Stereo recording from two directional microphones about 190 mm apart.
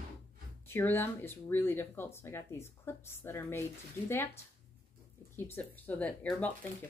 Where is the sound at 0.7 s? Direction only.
10° left (ahead or behind).